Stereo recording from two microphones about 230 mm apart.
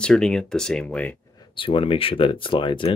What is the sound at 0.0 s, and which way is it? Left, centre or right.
Speech, centre.